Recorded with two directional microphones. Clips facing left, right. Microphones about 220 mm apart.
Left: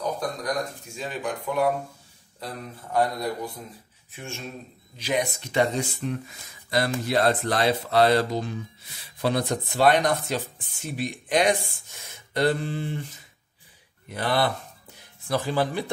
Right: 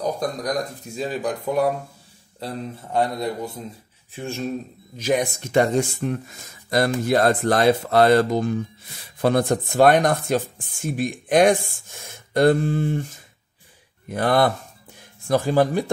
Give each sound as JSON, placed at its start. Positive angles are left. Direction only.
{"t": 0.9, "sound": "speech", "side_deg": -35}
{"t": 2.4, "sound": "a man's voice", "side_deg": -25}
{"t": 4.1, "sound": "speech", "side_deg": -35}
{"t": 4.9, "sound": "speech", "side_deg": -45}